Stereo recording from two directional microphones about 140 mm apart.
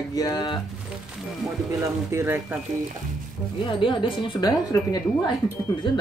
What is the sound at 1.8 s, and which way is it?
Speech, 20° right (ahead or behind).